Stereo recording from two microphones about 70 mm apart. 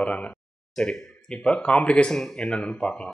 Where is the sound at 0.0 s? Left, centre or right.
Centre.